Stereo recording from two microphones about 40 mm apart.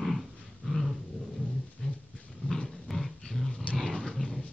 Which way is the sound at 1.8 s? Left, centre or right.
Left.